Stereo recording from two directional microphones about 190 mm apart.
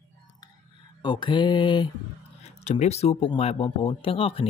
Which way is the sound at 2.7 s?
35° left (ahead or behind).